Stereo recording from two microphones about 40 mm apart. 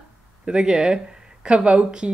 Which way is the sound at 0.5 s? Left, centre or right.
Right.